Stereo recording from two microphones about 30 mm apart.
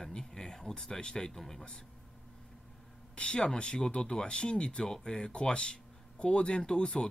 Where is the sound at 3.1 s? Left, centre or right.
Left.